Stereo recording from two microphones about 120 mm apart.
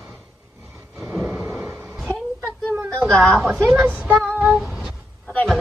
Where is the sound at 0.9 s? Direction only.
20° right (ahead or behind).